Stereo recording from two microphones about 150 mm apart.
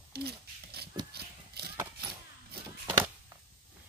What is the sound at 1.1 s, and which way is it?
Horse, 90° right.